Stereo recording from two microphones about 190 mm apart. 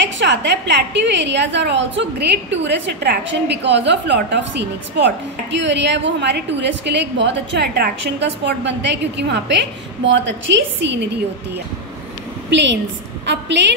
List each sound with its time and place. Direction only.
0.0 s a woman's voice: 70° right (ahead or behind)
12.4 s a woman's voice: 70° right (ahead or behind)